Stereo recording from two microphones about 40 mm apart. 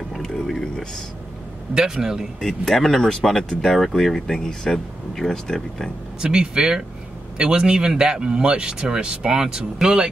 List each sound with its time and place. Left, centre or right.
0.2 s music: centre
1.7 s speech: centre
2.4 s speech: centre
3.7 s speech: centre
6.2 s speech: centre